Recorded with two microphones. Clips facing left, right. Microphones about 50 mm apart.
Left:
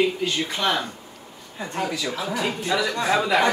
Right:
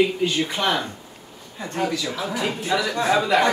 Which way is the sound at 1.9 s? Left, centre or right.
Centre.